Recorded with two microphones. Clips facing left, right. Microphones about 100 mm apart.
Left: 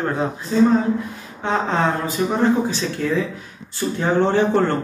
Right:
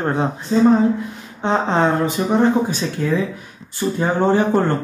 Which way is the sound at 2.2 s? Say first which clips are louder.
Right 1 dB; 30° right (ahead or behind).